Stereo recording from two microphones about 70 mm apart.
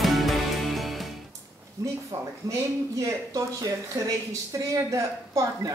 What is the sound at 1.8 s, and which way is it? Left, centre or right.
Speech, right.